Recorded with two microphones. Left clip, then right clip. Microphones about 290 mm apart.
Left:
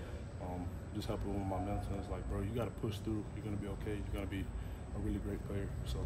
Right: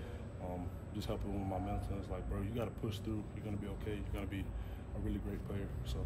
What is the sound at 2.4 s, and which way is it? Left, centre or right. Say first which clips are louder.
Speech: left 2 dB; centre.